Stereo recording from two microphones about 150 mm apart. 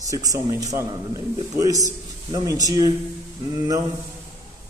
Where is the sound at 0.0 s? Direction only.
25° right (ahead or behind).